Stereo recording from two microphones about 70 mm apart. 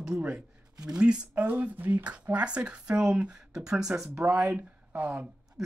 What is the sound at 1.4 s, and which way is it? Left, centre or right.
Speech, right.